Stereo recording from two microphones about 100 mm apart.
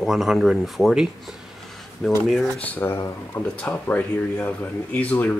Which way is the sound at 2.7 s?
25° left (ahead or behind).